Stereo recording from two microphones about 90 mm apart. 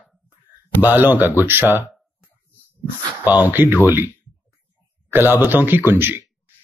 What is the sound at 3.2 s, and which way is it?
Speech, 20° right (ahead or behind).